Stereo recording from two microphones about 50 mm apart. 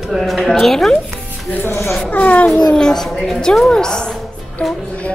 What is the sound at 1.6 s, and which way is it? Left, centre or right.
Speech, left.